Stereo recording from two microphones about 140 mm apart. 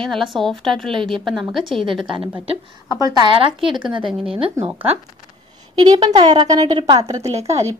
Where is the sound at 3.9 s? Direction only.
40° right (ahead or behind).